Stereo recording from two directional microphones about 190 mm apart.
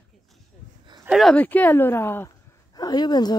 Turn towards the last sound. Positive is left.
turn(degrees=20)  # may be behind; listen again after turning